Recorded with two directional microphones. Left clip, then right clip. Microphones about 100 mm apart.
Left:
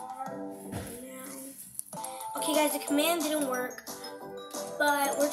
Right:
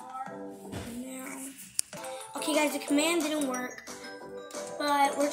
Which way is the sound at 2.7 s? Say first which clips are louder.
Even; 65° right (ahead or behind).